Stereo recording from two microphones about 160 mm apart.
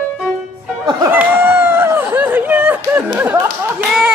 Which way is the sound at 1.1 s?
10° right (ahead or behind).